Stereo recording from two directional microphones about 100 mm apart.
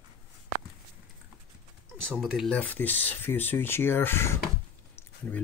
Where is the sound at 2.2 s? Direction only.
Centre (ahead or behind).